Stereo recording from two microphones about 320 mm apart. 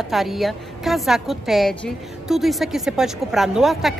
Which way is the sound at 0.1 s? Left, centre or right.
Centre.